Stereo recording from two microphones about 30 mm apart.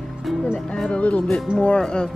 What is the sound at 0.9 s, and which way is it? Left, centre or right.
Music, left.